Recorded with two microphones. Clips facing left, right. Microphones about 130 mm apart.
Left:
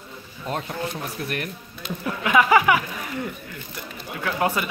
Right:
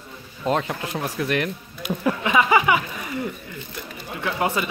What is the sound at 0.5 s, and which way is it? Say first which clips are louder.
Speech: right 5 dB; 90° right.